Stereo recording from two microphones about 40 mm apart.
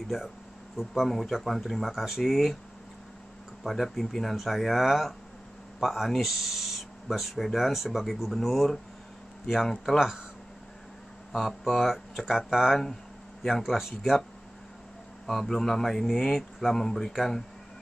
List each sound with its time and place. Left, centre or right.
0.1 s speech: centre
3.6 s speech: centre
9.9 s speech: centre
11.3 s speech: centre
15.2 s speech: centre